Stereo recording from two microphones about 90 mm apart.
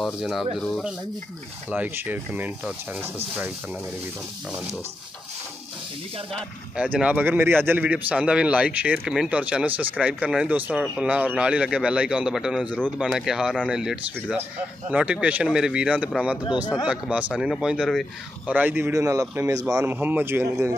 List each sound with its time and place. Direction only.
0.0 s speech: centre (ahead or behind)
1.7 s speech: 20° right (ahead or behind)
6.8 s speech: 15° right (ahead or behind)
18.5 s speech: 20° right (ahead or behind)
18.9 s speech: 40° right (ahead or behind)
19.9 s speech: 20° right (ahead or behind)